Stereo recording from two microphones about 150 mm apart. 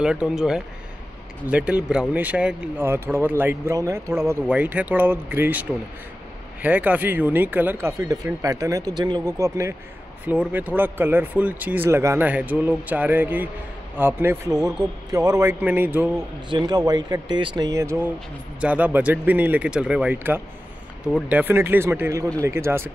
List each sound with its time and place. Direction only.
0.0 s speech: 5° right (ahead or behind); by 15.5 s 25° right (ahead or behind)
15.6 s speech: 15° right (ahead or behind)
16.4 s speech: 30° right (ahead or behind)